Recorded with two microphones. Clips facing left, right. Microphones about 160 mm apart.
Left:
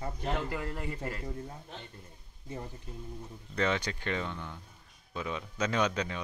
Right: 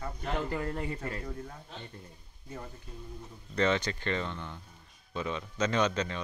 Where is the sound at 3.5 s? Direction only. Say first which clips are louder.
Right 3 dB; 5° left (ahead or behind).